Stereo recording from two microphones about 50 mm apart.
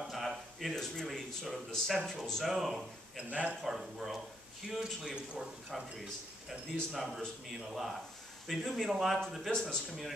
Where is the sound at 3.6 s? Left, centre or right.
Centre.